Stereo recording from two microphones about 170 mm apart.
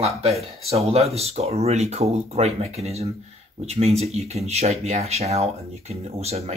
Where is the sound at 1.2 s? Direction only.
40° right (ahead or behind).